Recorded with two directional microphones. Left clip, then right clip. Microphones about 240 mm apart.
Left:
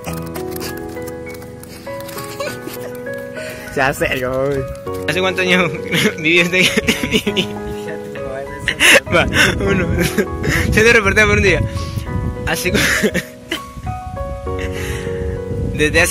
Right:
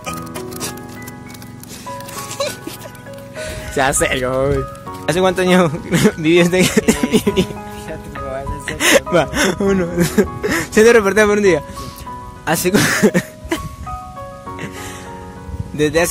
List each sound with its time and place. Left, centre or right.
3.7 s speech: centre
5.0 s speech: right
8.6 s speech: centre; by 13.6 s right
15.8 s speech: centre